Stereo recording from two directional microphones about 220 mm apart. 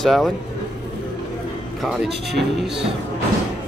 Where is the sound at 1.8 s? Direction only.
Centre (ahead or behind).